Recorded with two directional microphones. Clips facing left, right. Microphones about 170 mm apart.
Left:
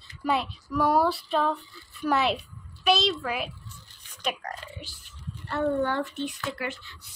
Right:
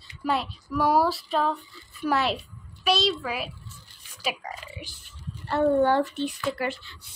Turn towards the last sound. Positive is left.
turn(degrees=-30)  # may be behind; listen again after turning